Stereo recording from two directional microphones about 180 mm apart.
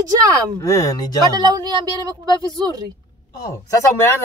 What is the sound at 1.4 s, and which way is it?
Speech, 20° right (ahead or behind).